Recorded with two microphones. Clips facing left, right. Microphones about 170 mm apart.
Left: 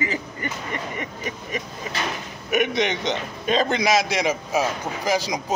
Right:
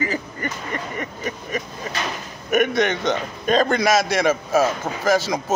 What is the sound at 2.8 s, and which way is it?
A man's voice, 50° right (ahead or behind).